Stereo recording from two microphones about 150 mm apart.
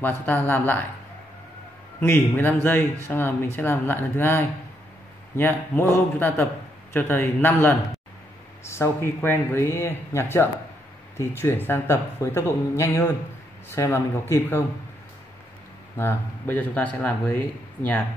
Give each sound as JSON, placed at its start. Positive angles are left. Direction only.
{"t": 0.2, "sound": "speech", "side_deg": 10}
{"t": 2.0, "sound": "speech", "side_deg": 15}
{"t": 16.0, "sound": "speech", "side_deg": 15}